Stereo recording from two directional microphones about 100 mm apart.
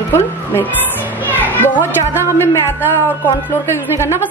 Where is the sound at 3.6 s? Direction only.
25° left (ahead or behind).